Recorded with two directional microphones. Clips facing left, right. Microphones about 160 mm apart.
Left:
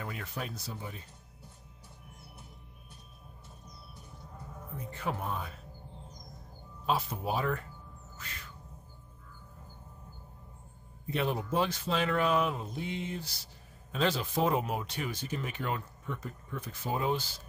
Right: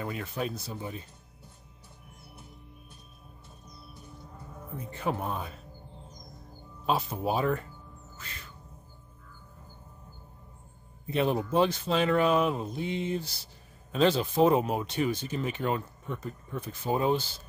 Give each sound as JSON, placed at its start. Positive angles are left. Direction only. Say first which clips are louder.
{"t": 0.0, "sound": "speech", "louder": "right 6 dB", "side_deg": -25}
{"t": 5.0, "sound": "speech", "louder": "right 4 dB", "side_deg": -25}
{"t": 6.9, "sound": "speech", "louder": "right 3 dB", "side_deg": -25}
{"t": 11.1, "sound": "speech", "louder": "right 5 dB", "side_deg": -25}